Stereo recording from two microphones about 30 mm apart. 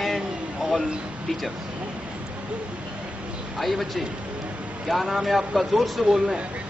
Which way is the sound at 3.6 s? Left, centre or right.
Centre.